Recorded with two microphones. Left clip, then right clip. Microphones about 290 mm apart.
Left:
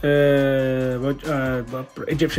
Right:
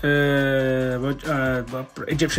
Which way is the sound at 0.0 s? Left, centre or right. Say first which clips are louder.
Left 3 dB; centre.